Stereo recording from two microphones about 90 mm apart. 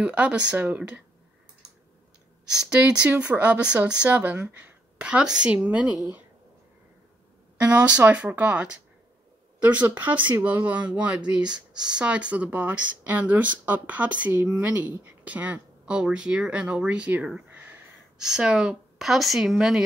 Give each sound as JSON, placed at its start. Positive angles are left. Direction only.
{"t": 0.0, "sound": "speech", "side_deg": -15}
{"t": 2.5, "sound": "speech", "side_deg": -15}
{"t": 7.6, "sound": "speech", "side_deg": -15}
{"t": 18.1, "sound": "a woman's voice", "side_deg": -5}